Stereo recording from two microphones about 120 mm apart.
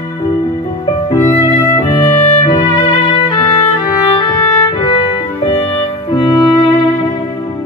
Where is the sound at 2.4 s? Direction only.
40° left (ahead or behind).